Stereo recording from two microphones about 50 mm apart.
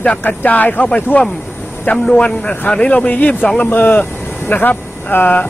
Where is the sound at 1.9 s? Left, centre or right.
Centre.